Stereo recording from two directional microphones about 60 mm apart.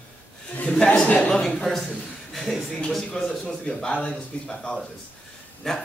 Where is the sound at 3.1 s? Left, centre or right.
Centre.